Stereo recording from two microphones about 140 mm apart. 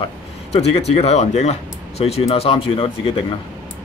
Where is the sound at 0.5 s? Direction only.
50° left (ahead or behind).